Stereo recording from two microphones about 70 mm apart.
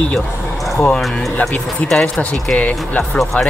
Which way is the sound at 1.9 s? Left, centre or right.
Centre.